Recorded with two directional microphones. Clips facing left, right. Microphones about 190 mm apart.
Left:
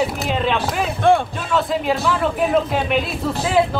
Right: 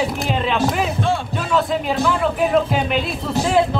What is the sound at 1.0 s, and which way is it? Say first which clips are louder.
Speech: left 6 dB; 55° left (ahead or behind).